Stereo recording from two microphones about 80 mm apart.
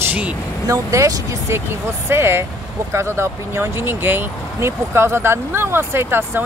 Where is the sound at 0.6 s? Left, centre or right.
Right.